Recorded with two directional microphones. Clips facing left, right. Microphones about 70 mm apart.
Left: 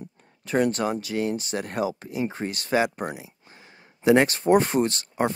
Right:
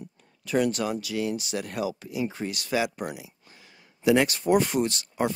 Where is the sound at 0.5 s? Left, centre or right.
Left.